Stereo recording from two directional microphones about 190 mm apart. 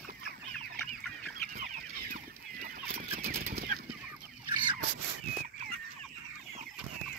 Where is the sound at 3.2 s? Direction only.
50° right (ahead or behind).